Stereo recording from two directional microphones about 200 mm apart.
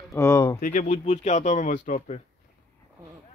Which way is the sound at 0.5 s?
40° left (ahead or behind).